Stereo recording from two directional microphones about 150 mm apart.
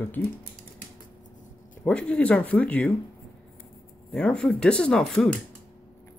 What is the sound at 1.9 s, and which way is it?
Speech, 5° left (ahead or behind).